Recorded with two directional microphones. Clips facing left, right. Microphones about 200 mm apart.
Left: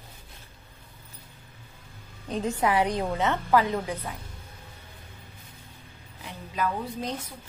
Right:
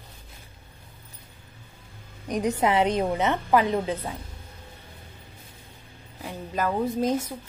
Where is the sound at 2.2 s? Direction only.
15° right (ahead or behind).